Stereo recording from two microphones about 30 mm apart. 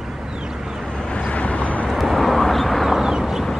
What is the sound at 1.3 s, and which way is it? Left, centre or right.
Vehicle, left.